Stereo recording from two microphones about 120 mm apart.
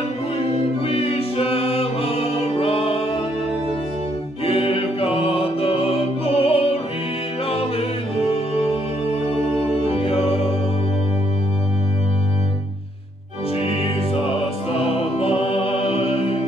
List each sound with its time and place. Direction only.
0.8 s music: 55° left (ahead or behind)
4.5 s music: 50° left (ahead or behind)
9.8 s music: 55° left (ahead or behind)
14.7 s music: 50° left (ahead or behind)